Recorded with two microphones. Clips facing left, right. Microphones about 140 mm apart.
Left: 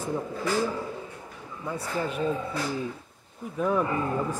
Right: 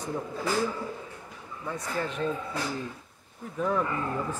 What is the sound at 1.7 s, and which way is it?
Speech, 10° left (ahead or behind).